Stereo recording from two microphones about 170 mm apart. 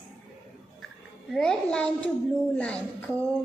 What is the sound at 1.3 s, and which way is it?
A child's voice, 5° left (ahead or behind).